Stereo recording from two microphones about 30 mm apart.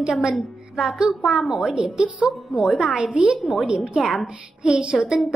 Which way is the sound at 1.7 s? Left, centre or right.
Right.